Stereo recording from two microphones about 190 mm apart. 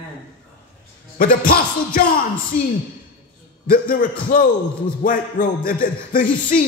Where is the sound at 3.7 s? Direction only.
50° left (ahead or behind).